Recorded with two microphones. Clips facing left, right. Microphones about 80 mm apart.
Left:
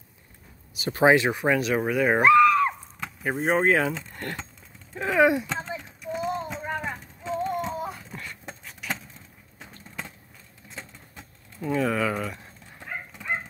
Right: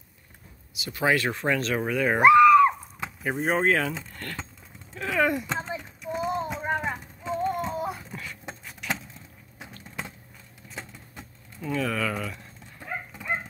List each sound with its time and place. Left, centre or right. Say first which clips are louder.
0.7 s speech: left 7 dB; left
1.0 s speech: left 5 dB; centre
2.2 s a sound: right 4 dB; centre
3.3 s speech: left 2 dB; centre
5.6 s a sound: right 1 dB; centre
11.8 s speech: left 3 dB; centre